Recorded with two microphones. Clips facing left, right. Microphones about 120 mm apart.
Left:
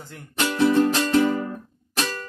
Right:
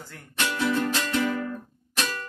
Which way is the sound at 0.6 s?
25° left (ahead or behind).